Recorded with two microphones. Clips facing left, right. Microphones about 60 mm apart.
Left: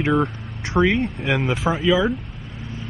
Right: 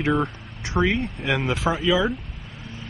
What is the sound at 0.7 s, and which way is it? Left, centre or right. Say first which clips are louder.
Speech: left 4 dB; centre.